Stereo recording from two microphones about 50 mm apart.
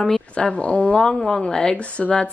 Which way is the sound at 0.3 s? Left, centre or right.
Left.